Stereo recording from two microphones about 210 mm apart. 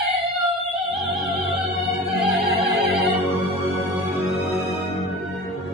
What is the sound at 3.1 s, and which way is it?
Music, centre (ahead or behind).